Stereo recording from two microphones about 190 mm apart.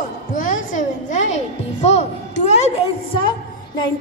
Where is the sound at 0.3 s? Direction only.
45° left (ahead or behind).